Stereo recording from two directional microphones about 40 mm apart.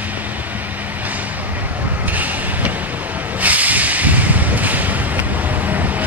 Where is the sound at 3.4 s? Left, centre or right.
Right.